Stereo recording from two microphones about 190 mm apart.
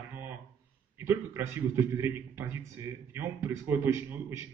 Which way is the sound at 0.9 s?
15° right (ahead or behind).